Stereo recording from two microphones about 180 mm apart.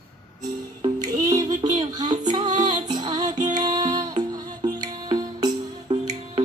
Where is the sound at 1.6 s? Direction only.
20° right (ahead or behind).